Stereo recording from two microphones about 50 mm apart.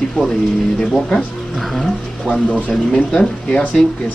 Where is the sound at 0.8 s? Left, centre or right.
Centre.